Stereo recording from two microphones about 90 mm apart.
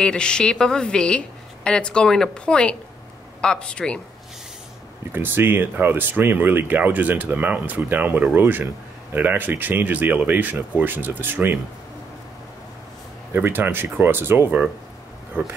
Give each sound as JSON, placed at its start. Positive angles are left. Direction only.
{"t": 0.0, "sound": "a woman's voice", "side_deg": 10}
{"t": 5.1, "sound": "speech", "side_deg": -25}
{"t": 13.3, "sound": "speech", "side_deg": -25}